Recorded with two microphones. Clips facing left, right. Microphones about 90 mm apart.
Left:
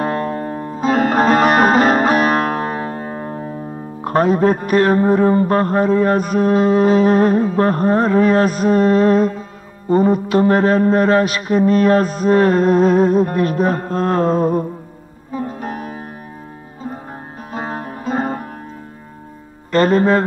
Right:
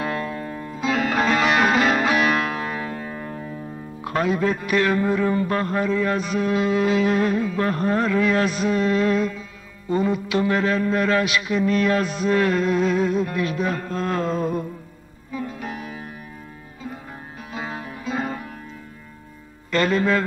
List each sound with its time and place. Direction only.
0.0 s music: 40° left (ahead or behind)
17.5 s music: 45° left (ahead or behind)
19.7 s music: 40° left (ahead or behind)